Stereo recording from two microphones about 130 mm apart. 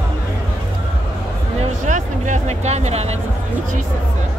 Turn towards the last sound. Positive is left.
turn(degrees=-60)  # may be behind; listen again after turning